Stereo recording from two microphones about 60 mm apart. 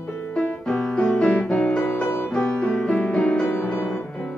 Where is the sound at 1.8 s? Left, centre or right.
Left.